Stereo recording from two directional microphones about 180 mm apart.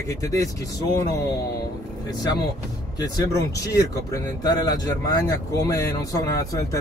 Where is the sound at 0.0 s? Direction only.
15° left (ahead or behind).